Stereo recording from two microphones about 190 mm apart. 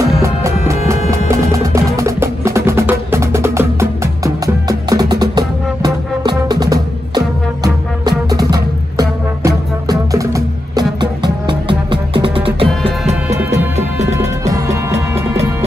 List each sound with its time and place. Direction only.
0.0 s music: 15° right (ahead or behind); by 13.4 s 30° right (ahead or behind)
14.1 s music: 15° right (ahead or behind)